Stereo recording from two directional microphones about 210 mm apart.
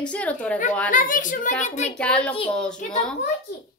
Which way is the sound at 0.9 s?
40° left (ahead or behind).